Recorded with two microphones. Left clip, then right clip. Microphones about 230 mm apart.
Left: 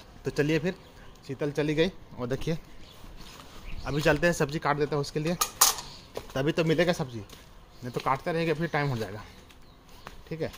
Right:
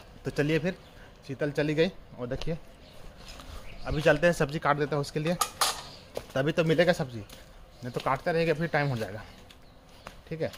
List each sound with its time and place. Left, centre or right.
0.2 s speech: centre
2.3 s speech: left
3.8 s speech: left
4.2 s speech: centre
10.4 s speech: centre